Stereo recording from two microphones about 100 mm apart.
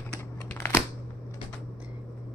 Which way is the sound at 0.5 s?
20° left (ahead or behind).